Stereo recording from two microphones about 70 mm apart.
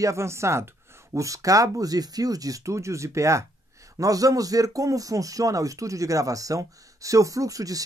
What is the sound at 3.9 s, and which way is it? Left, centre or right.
Speech, right.